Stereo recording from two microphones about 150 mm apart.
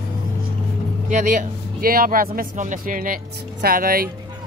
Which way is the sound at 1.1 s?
55° right (ahead or behind).